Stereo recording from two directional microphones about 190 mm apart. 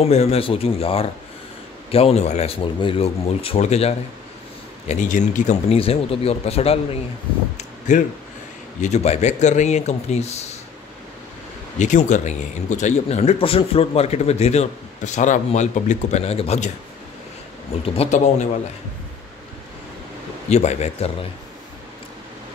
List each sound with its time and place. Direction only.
0.0 s a man's voice: 35° left (ahead or behind)
7.5 s a sound: 40° left (ahead or behind)
8.8 s a man's voice: 35° left (ahead or behind)
11.8 s a man's voice: 40° left (ahead or behind)
17.9 s a man's voice: 35° left (ahead or behind)
20.4 s a man's voice: 35° left (ahead or behind)